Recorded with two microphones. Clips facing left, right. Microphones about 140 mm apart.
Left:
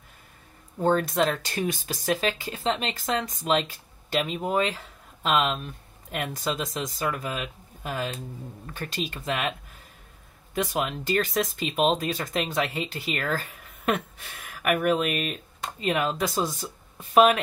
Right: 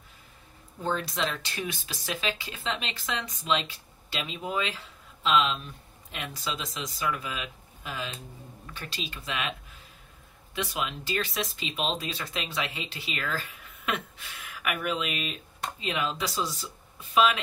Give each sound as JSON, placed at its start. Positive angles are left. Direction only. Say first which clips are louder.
{"t": 0.7, "sound": "speech", "louder": "left 8 dB", "side_deg": 45}